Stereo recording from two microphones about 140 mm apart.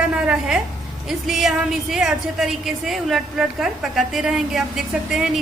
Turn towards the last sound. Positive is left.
turn(degrees=-5)  # may be behind; listen again after turning